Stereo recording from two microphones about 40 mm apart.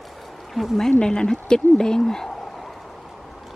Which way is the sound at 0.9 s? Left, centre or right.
Left.